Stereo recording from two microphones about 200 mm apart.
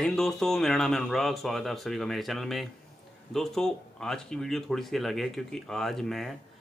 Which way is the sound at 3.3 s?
Centre (ahead or behind).